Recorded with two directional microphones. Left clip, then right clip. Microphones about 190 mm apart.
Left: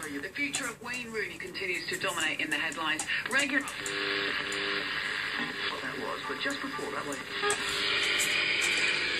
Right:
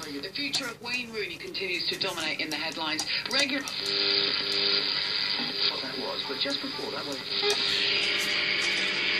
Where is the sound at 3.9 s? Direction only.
30° right (ahead or behind).